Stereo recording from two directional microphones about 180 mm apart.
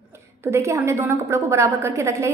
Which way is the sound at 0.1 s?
15° right (ahead or behind).